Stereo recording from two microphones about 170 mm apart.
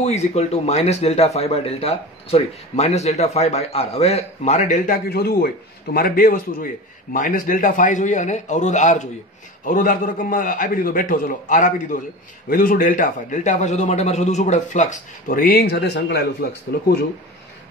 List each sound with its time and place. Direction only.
0.0 s a man's voice: 40° left (ahead or behind); by 16.3 s 75° left (ahead or behind)